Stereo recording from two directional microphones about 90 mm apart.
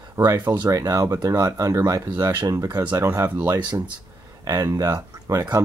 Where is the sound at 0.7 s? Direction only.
35° right (ahead or behind).